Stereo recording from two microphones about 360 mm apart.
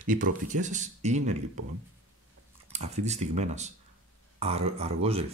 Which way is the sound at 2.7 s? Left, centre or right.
Centre.